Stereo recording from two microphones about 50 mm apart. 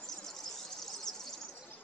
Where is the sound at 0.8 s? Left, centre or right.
Centre.